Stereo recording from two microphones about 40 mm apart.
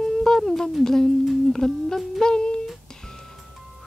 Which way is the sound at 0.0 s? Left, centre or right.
Centre.